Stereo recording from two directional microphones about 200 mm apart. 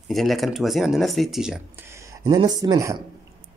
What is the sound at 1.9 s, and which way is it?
Speech, 15° right (ahead or behind).